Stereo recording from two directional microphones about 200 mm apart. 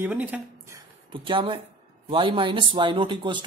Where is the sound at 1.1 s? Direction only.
25° right (ahead or behind).